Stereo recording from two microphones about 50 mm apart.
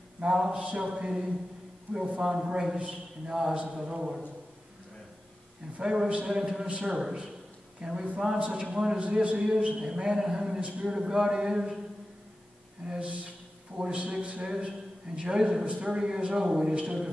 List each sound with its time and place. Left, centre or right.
0.2 s a man's voice: centre
3.5 s a man's voice: right
5.8 s a man's voice: centre
12.8 s a man's voice: right
15.6 s a man's voice: right